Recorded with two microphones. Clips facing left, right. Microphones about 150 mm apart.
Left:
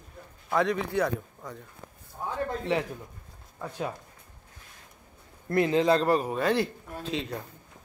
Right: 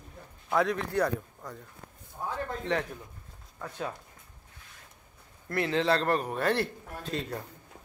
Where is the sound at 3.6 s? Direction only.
10° left (ahead or behind).